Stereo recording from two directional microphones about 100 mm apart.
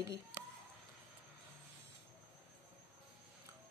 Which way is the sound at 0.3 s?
20° right (ahead or behind).